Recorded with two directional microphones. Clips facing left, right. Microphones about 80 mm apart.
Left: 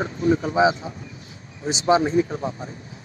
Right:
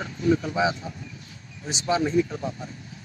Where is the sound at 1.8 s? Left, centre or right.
Left.